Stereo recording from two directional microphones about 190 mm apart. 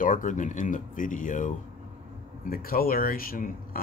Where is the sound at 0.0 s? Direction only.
45° left (ahead or behind).